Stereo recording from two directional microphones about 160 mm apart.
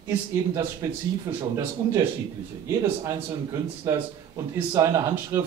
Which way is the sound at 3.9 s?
15° right (ahead or behind).